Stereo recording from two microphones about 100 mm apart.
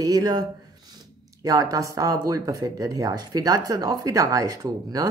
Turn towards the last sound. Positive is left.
turn(degrees=-35)  # may be behind; listen again after turning